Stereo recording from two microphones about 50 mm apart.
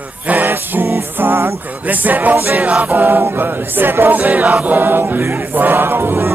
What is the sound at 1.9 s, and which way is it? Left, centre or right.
Choir, right.